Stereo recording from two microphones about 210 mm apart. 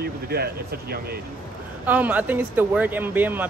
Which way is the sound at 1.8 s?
10° right (ahead or behind).